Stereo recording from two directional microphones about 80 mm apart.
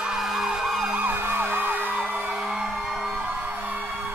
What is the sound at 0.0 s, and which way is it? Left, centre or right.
Emergency vehicle, centre.